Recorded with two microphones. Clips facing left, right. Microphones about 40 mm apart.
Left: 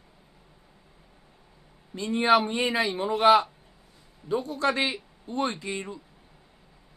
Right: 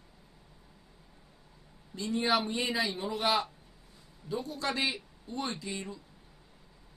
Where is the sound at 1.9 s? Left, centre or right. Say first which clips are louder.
Left 7 dB; left.